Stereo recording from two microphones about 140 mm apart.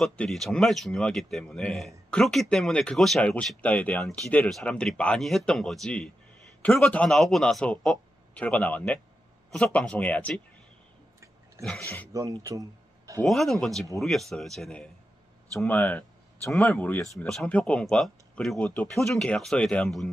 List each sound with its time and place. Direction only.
0.0 s a man's voice: centre (ahead or behind)
11.6 s speech: 5° left (ahead or behind)
12.1 s speech: 25° right (ahead or behind)
13.2 s a man's voice: centre (ahead or behind)